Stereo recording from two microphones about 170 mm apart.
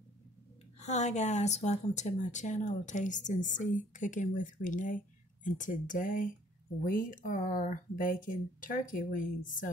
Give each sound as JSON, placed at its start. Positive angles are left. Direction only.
{"t": 0.7, "sound": "speech", "side_deg": 40}